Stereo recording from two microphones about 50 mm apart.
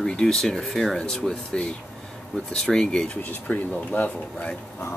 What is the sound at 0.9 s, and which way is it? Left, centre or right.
Speech, centre.